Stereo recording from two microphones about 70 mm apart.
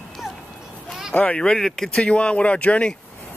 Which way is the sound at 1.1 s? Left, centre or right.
Centre.